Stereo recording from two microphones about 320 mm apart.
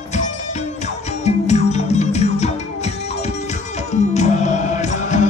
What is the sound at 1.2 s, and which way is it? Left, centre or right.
Music, left.